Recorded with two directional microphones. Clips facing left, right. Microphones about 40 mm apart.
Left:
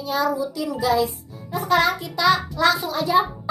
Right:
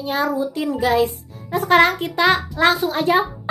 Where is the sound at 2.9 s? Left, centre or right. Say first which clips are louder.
Right 2 dB; right.